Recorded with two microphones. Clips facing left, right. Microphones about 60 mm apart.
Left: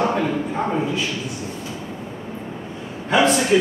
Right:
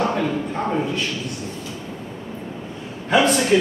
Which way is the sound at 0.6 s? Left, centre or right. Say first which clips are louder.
Even; centre.